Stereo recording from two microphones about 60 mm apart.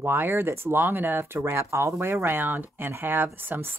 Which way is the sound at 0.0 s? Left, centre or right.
Right.